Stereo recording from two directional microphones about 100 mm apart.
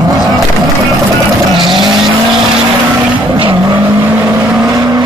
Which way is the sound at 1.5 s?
50° right (ahead or behind).